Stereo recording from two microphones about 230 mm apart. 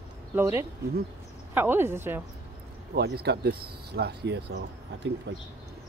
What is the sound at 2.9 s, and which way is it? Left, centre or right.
Speech, right.